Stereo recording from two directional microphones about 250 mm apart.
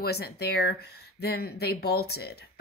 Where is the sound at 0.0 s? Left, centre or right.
Left.